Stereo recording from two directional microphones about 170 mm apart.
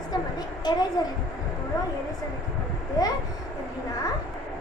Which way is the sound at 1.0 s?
25° left (ahead or behind).